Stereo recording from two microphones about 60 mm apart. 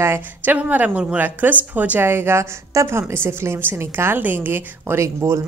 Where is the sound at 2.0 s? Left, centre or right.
Right.